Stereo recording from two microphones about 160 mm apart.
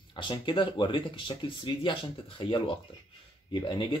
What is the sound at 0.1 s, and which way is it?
Speech, 30° left (ahead or behind).